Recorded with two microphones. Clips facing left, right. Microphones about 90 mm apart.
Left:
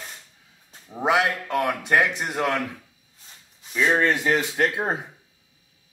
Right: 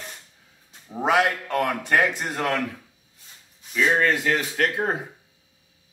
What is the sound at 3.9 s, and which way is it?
Speech, 20° left (ahead or behind).